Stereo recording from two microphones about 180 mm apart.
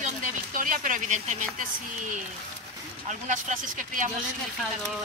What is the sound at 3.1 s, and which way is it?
Speech, 45° right (ahead or behind).